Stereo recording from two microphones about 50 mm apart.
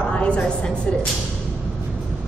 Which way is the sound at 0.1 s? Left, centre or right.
Left.